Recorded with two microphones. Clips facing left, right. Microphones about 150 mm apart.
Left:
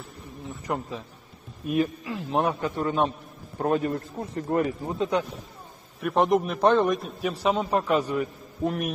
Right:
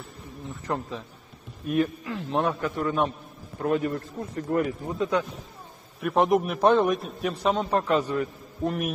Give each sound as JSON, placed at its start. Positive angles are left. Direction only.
{"t": 0.7, "sound": "a man's voice", "side_deg": 5}
{"t": 3.5, "sound": "speech", "side_deg": 35}
{"t": 5.9, "sound": "a man's voice", "side_deg": 0}
{"t": 8.6, "sound": "a man's voice", "side_deg": 0}